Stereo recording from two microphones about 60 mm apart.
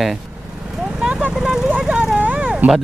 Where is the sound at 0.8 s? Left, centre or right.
Centre.